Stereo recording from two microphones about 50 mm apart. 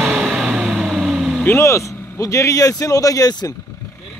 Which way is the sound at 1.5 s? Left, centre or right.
Left.